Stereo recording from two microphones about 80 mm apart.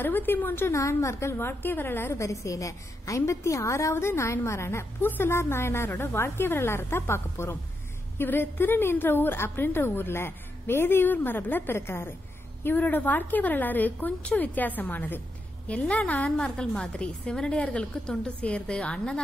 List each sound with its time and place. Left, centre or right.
0.0 s a woman's voice: left